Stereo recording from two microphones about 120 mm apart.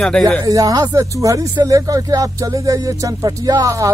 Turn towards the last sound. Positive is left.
turn(degrees=-30)  # may be behind; listen again after turning